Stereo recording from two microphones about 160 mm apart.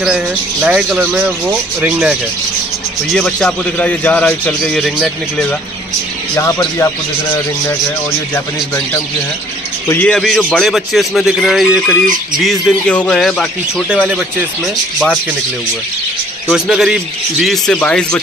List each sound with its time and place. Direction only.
0.0 s a man's voice: 5° right (ahead or behind)
6.3 s speech: 20° left (ahead or behind)
9.8 s a man's voice: 15° left (ahead or behind)
10.1 s a man's voice: centre (ahead or behind)
16.5 s a man's voice: centre (ahead or behind)